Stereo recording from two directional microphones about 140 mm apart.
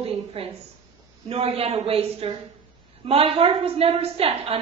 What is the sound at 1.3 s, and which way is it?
A woman's voice, 45° right (ahead or behind).